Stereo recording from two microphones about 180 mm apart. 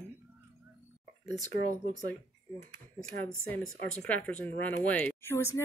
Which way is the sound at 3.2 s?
10° left (ahead or behind).